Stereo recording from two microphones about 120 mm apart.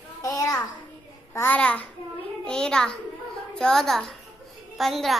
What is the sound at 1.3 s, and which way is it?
Babbling, 15° left (ahead or behind).